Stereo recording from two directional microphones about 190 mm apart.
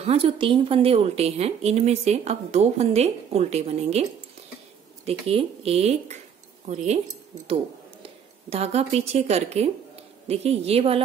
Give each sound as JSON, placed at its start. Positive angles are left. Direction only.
{"t": 0.0, "sound": "a woman's voice", "side_deg": -30}
{"t": 5.0, "sound": "a woman's voice", "side_deg": -30}
{"t": 8.5, "sound": "a woman's voice", "side_deg": -35}